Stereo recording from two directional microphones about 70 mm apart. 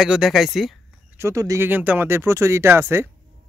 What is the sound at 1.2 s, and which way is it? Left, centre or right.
Speech, right.